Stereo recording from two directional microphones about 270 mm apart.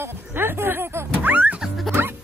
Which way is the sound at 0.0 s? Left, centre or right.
Centre.